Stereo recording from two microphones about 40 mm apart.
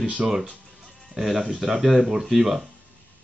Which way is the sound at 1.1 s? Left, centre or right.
Centre.